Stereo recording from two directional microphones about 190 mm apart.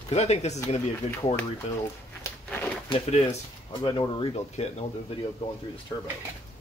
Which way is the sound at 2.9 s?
35° left (ahead or behind).